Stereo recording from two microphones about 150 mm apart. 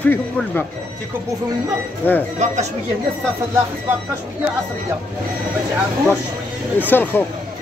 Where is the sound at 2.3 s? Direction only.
50° right (ahead or behind).